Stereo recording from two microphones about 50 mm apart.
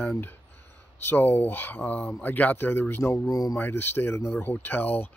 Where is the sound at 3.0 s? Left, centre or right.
Left.